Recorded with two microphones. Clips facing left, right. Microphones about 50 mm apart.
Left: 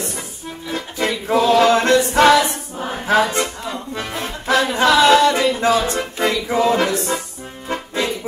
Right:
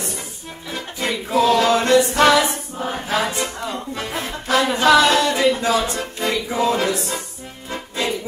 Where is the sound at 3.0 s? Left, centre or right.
Left.